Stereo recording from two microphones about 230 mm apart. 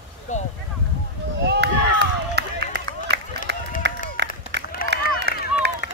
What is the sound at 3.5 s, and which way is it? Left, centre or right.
Run, right.